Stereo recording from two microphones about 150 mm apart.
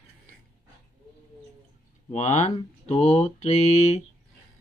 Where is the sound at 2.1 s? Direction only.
50° left (ahead or behind).